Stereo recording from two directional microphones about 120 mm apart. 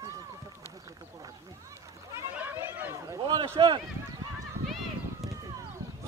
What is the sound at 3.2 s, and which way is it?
Speech, 40° right (ahead or behind).